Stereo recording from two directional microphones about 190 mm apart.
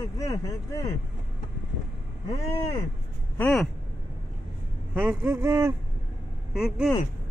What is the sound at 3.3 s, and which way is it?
Speech, 5° left (ahead or behind).